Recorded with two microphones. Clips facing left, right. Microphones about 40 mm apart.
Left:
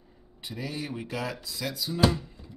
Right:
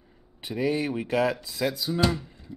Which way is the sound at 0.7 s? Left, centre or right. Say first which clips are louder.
Right 8 dB; right.